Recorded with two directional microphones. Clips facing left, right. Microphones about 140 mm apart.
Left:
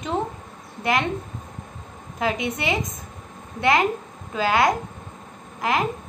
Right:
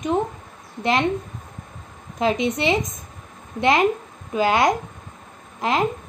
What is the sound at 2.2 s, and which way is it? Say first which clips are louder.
A woman's voice: right 4 dB; 20° right (ahead or behind).